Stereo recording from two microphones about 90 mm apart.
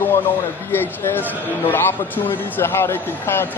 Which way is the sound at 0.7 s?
25° left (ahead or behind).